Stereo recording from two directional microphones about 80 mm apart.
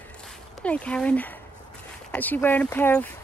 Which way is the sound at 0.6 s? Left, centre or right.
Centre.